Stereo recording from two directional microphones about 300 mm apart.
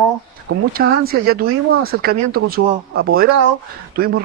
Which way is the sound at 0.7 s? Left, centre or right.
Right.